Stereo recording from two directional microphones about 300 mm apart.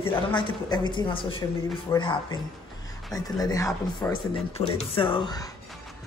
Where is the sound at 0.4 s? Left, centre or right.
Centre.